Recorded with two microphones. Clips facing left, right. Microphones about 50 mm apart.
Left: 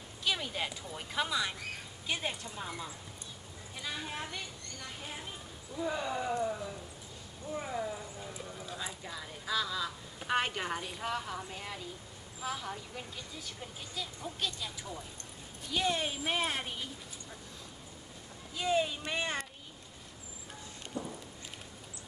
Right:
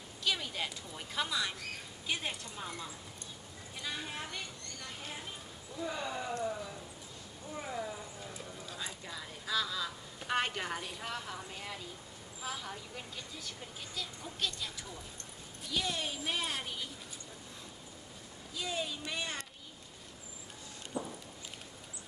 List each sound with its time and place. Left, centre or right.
0.2 s a woman's voice: centre
15.7 s a woman's voice: left
18.6 s speech: left
20.9 s a sound: centre